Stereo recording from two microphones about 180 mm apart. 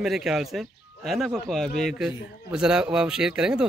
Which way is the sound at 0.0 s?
Centre (ahead or behind).